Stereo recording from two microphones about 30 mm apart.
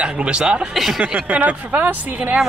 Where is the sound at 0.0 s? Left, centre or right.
Right.